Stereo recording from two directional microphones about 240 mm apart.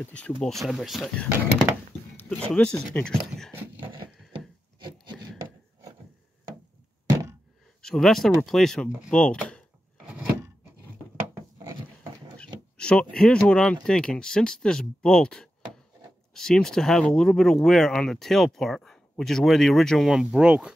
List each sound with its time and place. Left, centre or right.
0.0 s speech: centre
4.3 s wood: centre
7.1 s a sound: centre
7.8 s speech: centre
10.0 s a sound: centre
12.7 s speech: centre